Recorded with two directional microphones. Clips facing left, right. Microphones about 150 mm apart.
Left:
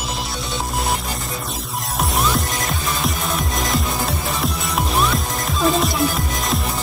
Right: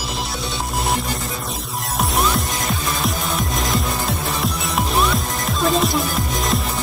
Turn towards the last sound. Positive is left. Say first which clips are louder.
# right 1 dB
turn(degrees=0)  # may be behind; listen again after turning